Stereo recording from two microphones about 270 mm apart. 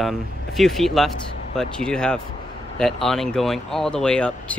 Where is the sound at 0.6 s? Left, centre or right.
Centre.